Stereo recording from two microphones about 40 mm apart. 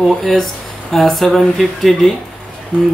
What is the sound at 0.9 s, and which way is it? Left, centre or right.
Speech, centre.